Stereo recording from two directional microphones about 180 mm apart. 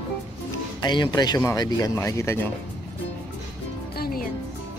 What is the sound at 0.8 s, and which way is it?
Speech, 25° left (ahead or behind).